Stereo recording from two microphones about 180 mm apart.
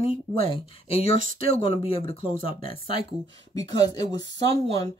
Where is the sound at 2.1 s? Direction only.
50° right (ahead or behind).